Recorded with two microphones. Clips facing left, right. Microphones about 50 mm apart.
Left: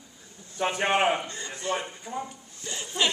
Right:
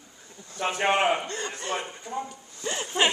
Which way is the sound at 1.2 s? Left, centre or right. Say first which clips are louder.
Right 3 dB; right.